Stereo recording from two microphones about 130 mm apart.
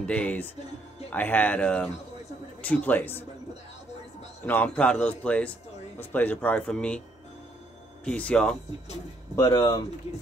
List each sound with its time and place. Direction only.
0.0 s speech: 10° left (ahead or behind)
4.5 s speech: 10° left (ahead or behind)
8.0 s speech: 10° left (ahead or behind)
9.3 s speech: 25° left (ahead or behind)